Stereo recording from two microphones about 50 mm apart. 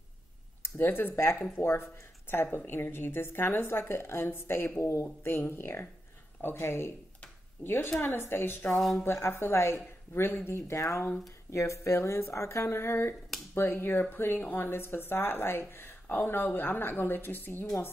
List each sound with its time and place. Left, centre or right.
0.6 s a woman's voice: left
8.7 s speech: centre
9.0 s speech: left
10.1 s speech: left
11.5 s a woman's voice: left